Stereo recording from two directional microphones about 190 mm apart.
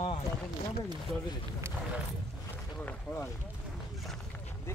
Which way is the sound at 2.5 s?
5° left (ahead or behind).